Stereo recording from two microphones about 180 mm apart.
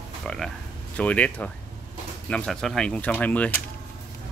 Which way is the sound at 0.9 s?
10° left (ahead or behind).